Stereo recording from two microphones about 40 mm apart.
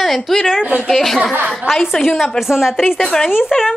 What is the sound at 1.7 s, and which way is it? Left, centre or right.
Speech, centre.